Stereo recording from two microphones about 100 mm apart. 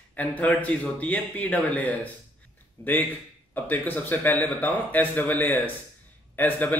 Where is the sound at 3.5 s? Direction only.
15° left (ahead or behind).